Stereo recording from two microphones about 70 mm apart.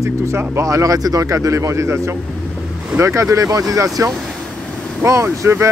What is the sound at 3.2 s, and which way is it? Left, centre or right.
Speech, right.